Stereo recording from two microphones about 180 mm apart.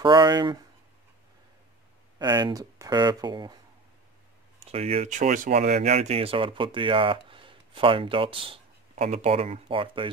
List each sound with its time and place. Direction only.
0.0 s speech: 25° right (ahead or behind)
2.1 s speech: 20° right (ahead or behind)
4.6 s speech: 35° right (ahead or behind)